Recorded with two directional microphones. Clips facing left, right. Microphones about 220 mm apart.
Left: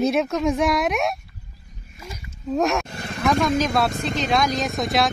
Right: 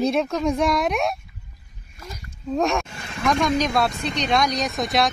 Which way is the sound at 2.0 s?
5° left (ahead or behind).